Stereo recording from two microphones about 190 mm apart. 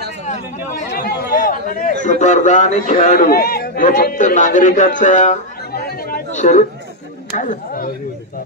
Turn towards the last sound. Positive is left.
turn(degrees=45)  # may be behind; listen again after turning